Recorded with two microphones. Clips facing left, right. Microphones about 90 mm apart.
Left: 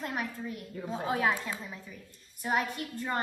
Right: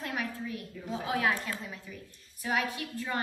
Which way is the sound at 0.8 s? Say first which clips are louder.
Left 2 dB; 40° left (ahead or behind).